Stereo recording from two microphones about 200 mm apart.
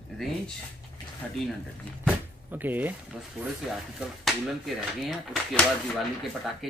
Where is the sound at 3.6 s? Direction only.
Centre (ahead or behind).